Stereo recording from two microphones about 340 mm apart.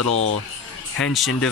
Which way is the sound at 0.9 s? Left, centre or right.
Centre.